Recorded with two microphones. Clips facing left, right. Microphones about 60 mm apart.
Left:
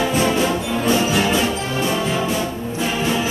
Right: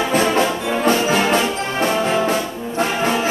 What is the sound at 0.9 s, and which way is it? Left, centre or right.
Music, right.